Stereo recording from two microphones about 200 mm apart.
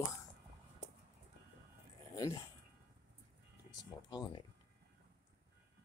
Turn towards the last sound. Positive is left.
turn(degrees=20)  # may be behind; listen again after turning